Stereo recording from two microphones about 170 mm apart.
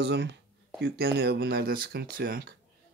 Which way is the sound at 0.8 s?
75° right (ahead or behind).